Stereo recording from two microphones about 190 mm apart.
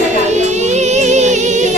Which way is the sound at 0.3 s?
35° right (ahead or behind).